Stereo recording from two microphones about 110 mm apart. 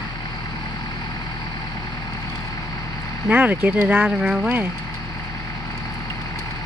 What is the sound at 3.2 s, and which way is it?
Speech, 15° right (ahead or behind).